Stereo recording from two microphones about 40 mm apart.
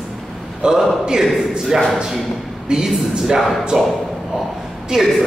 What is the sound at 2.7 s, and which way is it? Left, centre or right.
Speech, centre.